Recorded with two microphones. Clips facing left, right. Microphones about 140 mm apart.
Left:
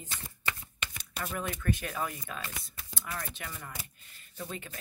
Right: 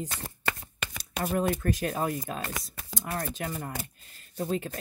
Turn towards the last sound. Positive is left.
turn(degrees=-40)  # may be behind; listen again after turning